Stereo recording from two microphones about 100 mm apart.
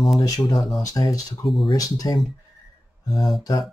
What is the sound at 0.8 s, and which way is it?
Speech, 35° left (ahead or behind).